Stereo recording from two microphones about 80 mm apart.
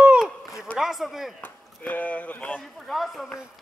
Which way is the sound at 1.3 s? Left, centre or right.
Centre.